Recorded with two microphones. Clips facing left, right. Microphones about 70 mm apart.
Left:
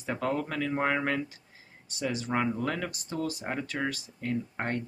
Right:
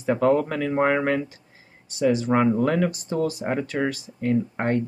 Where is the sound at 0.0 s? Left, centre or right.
Right.